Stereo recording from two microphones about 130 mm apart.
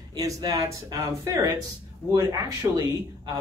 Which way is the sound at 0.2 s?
25° right (ahead or behind).